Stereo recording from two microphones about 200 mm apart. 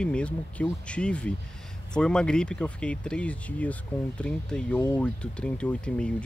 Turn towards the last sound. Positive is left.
turn(degrees=5)  # may be behind; listen again after turning